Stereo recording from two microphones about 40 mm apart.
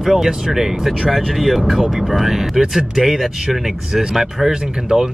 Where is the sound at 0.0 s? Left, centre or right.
Centre.